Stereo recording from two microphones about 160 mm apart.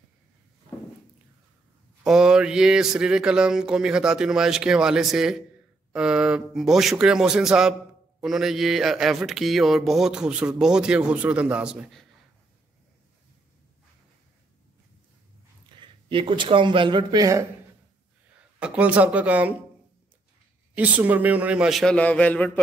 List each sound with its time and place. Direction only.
2.0 s speech: 5° right (ahead or behind)
15.8 s speech: 30° right (ahead or behind)
18.6 s a man's voice: 10° right (ahead or behind)
20.7 s a man's voice: 10° right (ahead or behind); by 22.5 s 10° left (ahead or behind)